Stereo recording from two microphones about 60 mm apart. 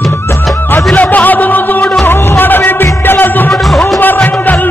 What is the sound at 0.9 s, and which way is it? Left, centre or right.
Music, left.